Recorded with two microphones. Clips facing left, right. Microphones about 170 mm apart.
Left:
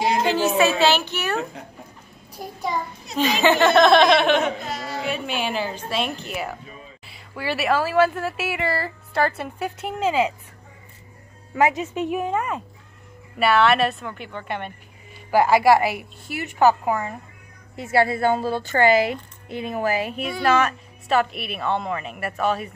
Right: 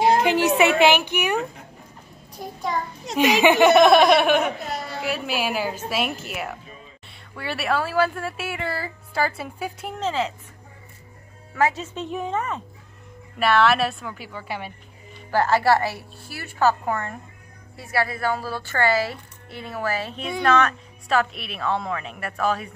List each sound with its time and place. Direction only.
0.6 s speech: 20° right (ahead or behind)
2.4 s a woman's voice: 5° left (ahead or behind)
3.2 s a woman's voice: 15° right (ahead or behind); by 10.3 s 10° left (ahead or behind)
11.5 s a woman's voice: 15° left (ahead or behind); by 14.7 s 5° right (ahead or behind)
15.3 s speech: 10° left (ahead or behind)
17.7 s a woman's voice: 25° left (ahead or behind); by 22.7 s centre (ahead or behind)